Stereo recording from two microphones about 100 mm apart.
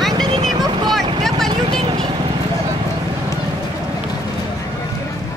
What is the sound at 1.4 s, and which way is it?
Vehicle, 5° left (ahead or behind).